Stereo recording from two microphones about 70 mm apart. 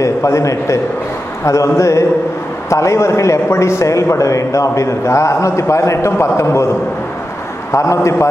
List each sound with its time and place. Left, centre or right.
0.0 s a man's voice: left
7.7 s a man's voice: left